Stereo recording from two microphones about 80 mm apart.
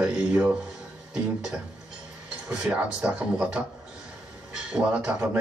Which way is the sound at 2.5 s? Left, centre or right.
Centre.